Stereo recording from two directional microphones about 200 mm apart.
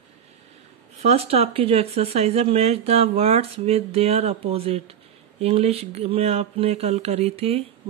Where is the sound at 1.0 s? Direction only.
30° right (ahead or behind).